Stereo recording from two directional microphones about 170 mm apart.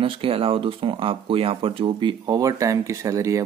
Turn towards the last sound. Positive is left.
turn(degrees=-20)  # may be behind; listen again after turning